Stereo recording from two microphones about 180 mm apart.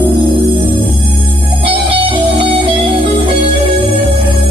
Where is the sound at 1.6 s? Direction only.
30° right (ahead or behind).